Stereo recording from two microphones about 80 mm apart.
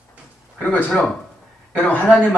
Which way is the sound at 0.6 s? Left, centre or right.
Left.